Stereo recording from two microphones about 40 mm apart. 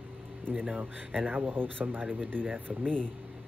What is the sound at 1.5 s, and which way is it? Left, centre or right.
Speech, right.